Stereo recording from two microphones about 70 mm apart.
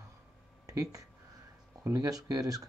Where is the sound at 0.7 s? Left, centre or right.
Right.